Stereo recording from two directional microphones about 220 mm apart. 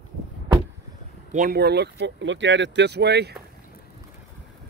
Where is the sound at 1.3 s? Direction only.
40° right (ahead or behind).